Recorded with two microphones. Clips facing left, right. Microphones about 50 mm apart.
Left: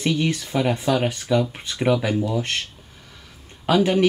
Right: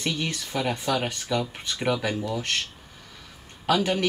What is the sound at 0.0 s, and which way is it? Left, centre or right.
Speech, centre.